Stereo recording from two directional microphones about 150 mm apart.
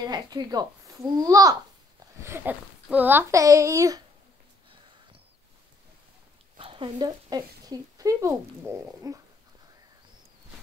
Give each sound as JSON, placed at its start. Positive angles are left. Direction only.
{"t": 0.0, "sound": "speech", "side_deg": -25}
{"t": 6.6, "sound": "speech", "side_deg": -35}